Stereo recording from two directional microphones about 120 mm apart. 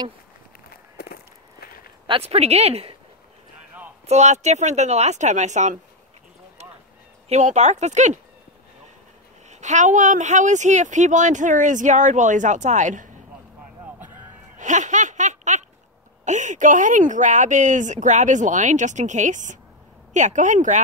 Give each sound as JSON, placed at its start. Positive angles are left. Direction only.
{"t": 2.0, "sound": "a woman's voice", "side_deg": -55}
{"t": 4.1, "sound": "speech", "side_deg": -70}
{"t": 6.6, "sound": "a sound", "side_deg": -65}
{"t": 7.2, "sound": "speech", "side_deg": -75}
{"t": 9.5, "sound": "speech", "side_deg": -80}
{"t": 14.6, "sound": "a sound", "side_deg": -90}
{"t": 16.3, "sound": "speech", "side_deg": -90}